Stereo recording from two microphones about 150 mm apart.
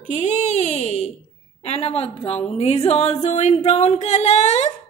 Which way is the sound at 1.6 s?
40° left (ahead or behind).